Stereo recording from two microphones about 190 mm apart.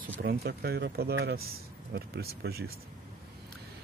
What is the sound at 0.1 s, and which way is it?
Speech, 55° right (ahead or behind).